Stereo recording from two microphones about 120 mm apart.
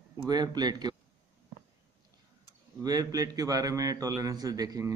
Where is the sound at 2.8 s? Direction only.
30° right (ahead or behind).